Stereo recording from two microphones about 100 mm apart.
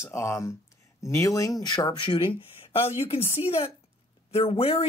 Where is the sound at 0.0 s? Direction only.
30° left (ahead or behind).